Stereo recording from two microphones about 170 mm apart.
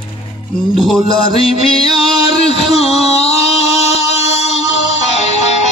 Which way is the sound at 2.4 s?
35° left (ahead or behind).